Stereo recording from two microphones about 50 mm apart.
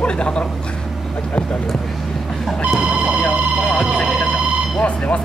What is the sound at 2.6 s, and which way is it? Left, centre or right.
Speech, centre.